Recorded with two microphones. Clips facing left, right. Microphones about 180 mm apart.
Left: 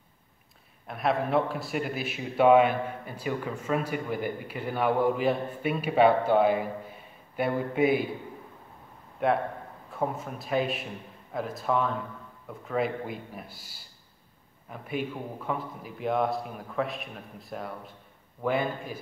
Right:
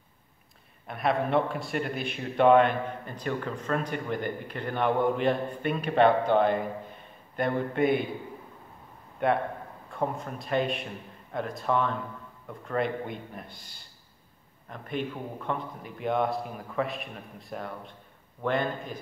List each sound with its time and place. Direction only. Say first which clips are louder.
0.8 s a man's voice: even; centre (ahead or behind)
9.2 s a man's voice: even; centre (ahead or behind)